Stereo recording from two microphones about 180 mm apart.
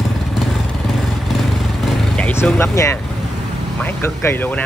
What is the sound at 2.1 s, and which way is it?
Speech, 10° left (ahead or behind).